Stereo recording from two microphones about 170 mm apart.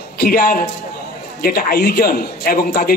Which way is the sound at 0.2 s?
65° left (ahead or behind).